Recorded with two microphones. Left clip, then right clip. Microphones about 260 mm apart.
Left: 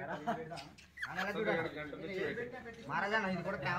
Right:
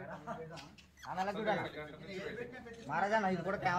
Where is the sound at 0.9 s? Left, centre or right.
Centre.